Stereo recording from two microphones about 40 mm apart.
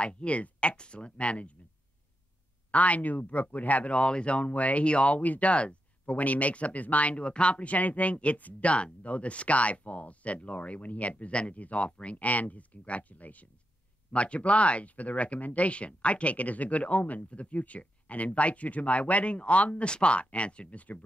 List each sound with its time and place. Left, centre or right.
0.0 s speech: left
2.7 s speech: left
5.2 s speech: left
5.5 s speech: left